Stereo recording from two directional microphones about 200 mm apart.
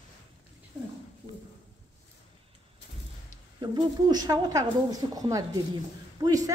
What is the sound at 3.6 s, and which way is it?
Speech, 20° right (ahead or behind).